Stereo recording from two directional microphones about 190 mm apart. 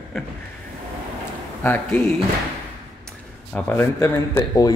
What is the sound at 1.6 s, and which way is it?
Speech, 10° left (ahead or behind).